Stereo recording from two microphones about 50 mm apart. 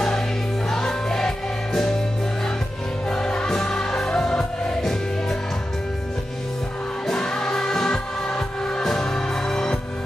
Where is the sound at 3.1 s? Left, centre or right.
Centre.